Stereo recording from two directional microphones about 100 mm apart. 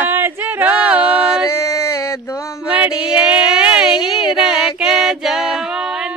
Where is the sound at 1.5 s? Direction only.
30° left (ahead or behind).